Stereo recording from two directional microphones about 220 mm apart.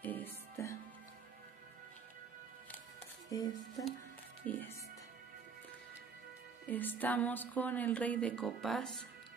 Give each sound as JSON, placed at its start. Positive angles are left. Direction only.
{"t": 0.0, "sound": "music", "side_deg": 10}
{"t": 3.3, "sound": "speech", "side_deg": 15}
{"t": 4.5, "sound": "music", "side_deg": 10}
{"t": 6.7, "sound": "a woman's voice", "side_deg": 10}